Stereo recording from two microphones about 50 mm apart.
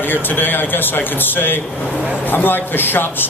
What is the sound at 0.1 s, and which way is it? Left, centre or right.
A man's voice, left.